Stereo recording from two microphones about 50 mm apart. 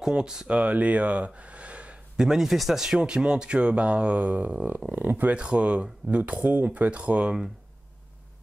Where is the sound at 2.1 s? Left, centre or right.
Centre; by 4.8 s right.